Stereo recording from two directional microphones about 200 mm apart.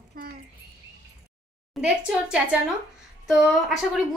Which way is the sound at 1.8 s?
5° right (ahead or behind).